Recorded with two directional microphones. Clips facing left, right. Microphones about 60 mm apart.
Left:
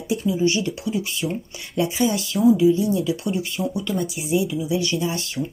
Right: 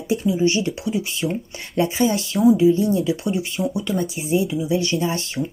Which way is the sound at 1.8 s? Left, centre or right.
Right.